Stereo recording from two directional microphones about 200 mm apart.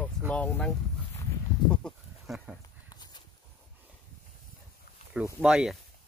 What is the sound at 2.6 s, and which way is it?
Walk, 20° left (ahead or behind).